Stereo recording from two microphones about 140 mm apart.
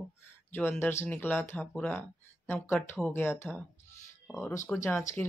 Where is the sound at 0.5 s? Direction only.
15° left (ahead or behind).